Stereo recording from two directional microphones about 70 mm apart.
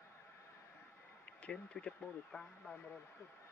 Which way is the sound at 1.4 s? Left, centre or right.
Centre.